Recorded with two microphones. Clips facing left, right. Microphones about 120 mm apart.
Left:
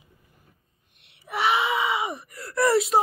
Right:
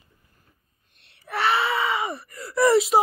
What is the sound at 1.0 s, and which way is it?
Groan, 15° left (ahead or behind).